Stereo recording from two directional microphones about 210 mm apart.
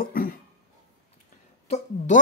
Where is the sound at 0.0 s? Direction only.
40° left (ahead or behind).